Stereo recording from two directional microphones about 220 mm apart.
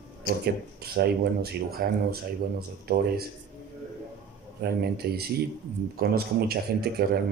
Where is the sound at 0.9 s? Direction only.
45° right (ahead or behind).